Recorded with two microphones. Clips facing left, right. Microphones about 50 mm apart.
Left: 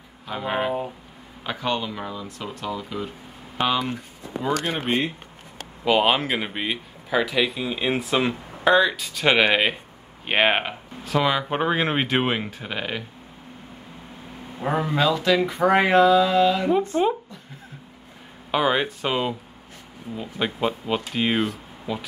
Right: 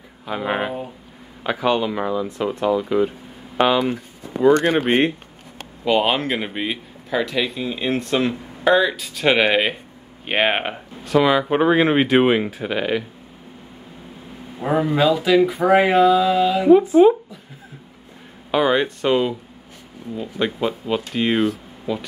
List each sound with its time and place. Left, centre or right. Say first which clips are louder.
0.3 s speech: right 2 dB; centre
4.8 s speech: right 6 dB; right
5.9 s speech: right 1 dB; centre
14.6 s speech: right 4 dB; centre
18.5 s speech: right 4 dB; centre